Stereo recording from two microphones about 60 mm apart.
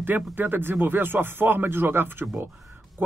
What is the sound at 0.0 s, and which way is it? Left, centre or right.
Speech, right.